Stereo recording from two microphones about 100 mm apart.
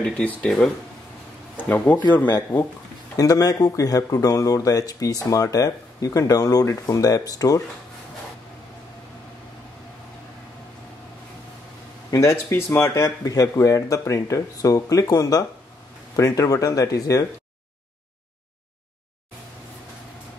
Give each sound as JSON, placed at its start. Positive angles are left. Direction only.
{"t": 0.0, "sound": "speech", "side_deg": 10}
{"t": 3.2, "sound": "speech", "side_deg": 40}
{"t": 12.1, "sound": "speech", "side_deg": 35}